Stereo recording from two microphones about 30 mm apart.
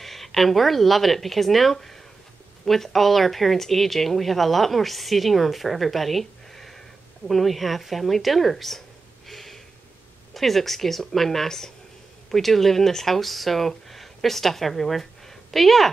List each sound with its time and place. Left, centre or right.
0.0 s speech: centre
9.3 s a sound: centre
10.3 s speech: centre
12.3 s speech: centre